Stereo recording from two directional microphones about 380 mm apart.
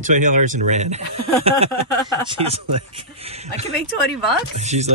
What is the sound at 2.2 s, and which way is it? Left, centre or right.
Speech, centre.